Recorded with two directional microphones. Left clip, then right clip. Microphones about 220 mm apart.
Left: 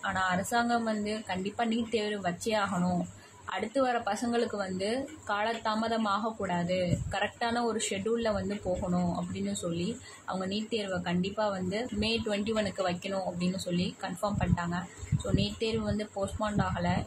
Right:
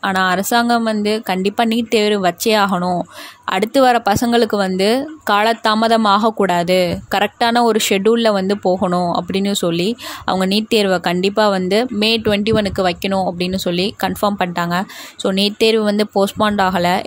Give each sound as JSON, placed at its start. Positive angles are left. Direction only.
{"t": 0.0, "sound": "speech", "side_deg": -50}